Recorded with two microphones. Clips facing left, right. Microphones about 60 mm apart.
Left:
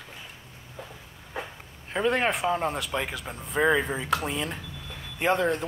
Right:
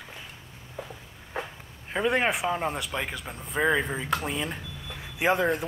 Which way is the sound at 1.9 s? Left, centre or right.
Centre.